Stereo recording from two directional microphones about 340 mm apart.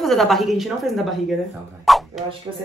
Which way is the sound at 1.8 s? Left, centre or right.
Centre.